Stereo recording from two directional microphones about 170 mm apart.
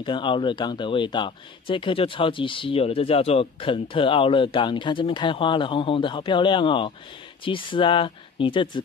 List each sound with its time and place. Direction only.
0.0 s speech: 30° left (ahead or behind)